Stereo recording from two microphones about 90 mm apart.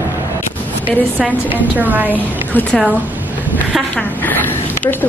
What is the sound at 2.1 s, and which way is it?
Speech, 20° left (ahead or behind).